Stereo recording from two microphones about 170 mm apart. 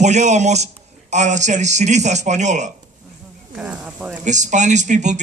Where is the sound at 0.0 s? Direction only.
45° right (ahead or behind).